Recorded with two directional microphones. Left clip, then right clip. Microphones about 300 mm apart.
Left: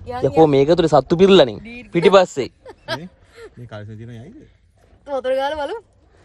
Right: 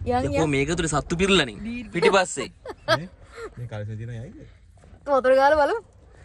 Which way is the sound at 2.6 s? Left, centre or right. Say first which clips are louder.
Right 4 dB; centre.